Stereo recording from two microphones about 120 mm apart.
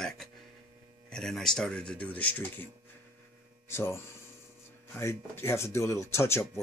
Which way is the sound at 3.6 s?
20° left (ahead or behind).